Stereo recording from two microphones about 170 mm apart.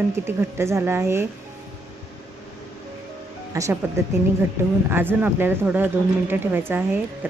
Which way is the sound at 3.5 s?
20° right (ahead or behind).